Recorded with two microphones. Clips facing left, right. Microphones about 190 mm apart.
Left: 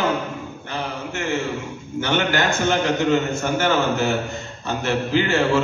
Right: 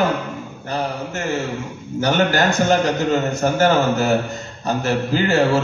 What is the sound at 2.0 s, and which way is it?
A man's voice, 40° right (ahead or behind).